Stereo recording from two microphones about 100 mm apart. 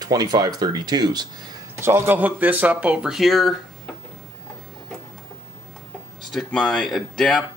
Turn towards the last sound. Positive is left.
turn(degrees=5)  # may be behind; listen again after turning